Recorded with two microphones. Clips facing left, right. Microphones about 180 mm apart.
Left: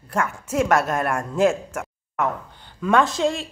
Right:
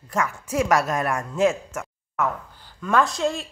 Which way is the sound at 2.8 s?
Centre (ahead or behind).